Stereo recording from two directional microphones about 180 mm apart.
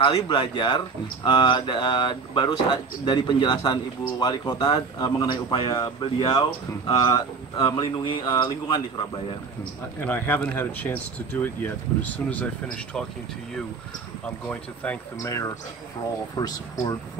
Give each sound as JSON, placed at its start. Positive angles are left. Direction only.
{"t": 0.0, "sound": "speech", "side_deg": 25}
{"t": 9.9, "sound": "speech", "side_deg": 10}
{"t": 14.5, "sound": "speech", "side_deg": 10}